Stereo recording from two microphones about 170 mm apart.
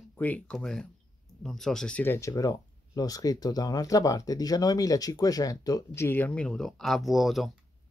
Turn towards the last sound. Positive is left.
turn(degrees=0)  # may be behind; listen again after turning